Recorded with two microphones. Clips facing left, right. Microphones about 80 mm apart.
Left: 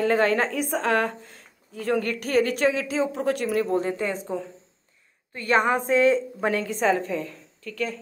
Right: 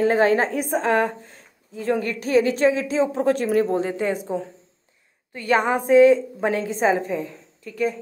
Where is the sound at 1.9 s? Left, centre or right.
Left.